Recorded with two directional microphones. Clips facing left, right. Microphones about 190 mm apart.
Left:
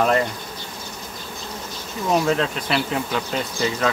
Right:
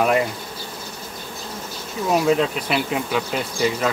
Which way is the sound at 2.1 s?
5° right (ahead or behind).